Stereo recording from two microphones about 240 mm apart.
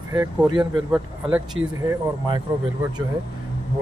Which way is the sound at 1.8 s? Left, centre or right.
Centre.